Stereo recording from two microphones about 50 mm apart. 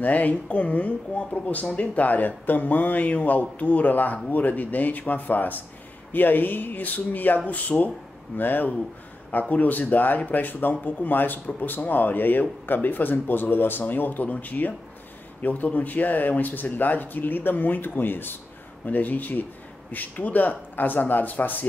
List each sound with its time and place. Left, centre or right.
0.0 s speech: left